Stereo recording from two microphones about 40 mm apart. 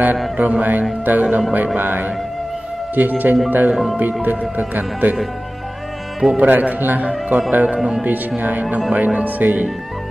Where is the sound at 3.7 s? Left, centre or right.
Centre.